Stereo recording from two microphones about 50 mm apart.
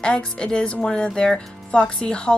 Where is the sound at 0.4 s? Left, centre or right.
Centre.